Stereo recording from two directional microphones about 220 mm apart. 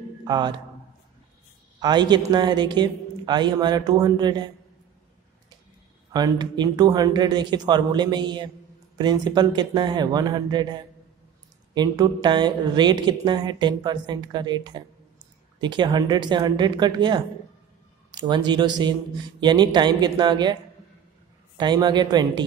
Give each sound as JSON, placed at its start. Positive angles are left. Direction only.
{"t": 0.2, "sound": "speech", "side_deg": -20}
{"t": 1.8, "sound": "a woman's voice", "side_deg": -20}
{"t": 6.1, "sound": "a woman's voice", "side_deg": -20}
{"t": 21.5, "sound": "a woman's voice", "side_deg": -20}